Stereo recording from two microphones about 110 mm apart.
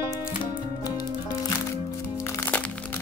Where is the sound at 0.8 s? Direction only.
30° left (ahead or behind).